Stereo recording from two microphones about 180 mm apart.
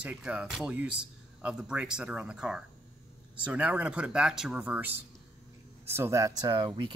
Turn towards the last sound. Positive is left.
turn(degrees=-25)  # may be behind; listen again after turning